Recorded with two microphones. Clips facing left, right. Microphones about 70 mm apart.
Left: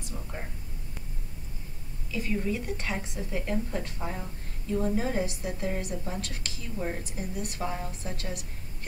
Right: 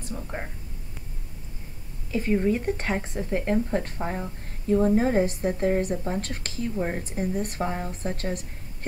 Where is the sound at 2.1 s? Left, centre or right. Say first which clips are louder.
Right 7 dB; right.